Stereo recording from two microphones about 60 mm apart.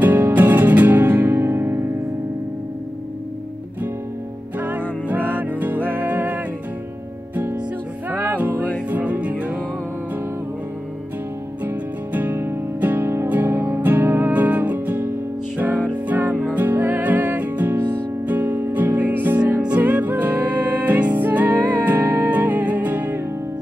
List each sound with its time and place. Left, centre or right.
0.0 s music: right
4.6 s music: right
8.1 s music: right
11.6 s music: right